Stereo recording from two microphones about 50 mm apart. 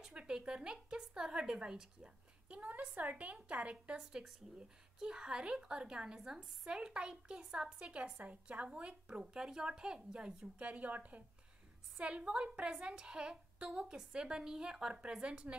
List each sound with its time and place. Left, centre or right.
0.0 s speech: centre
2.5 s a woman's voice: right
10.6 s a woman's voice: right